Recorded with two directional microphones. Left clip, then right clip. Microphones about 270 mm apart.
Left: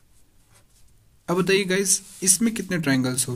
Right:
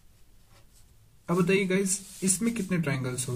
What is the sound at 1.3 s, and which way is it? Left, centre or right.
A man's voice, left.